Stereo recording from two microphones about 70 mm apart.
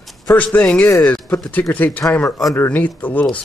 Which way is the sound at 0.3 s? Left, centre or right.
Left.